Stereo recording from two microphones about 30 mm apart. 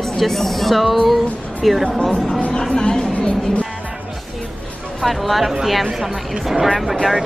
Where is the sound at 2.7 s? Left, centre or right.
Left.